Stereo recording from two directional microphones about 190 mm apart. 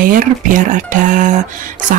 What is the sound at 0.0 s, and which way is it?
Speech, 45° right (ahead or behind).